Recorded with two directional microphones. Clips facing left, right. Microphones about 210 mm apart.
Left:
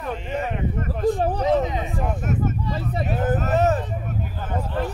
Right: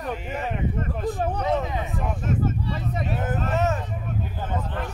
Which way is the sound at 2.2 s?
30° right (ahead or behind).